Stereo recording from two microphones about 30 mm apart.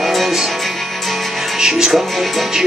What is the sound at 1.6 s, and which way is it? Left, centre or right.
Speech, centre.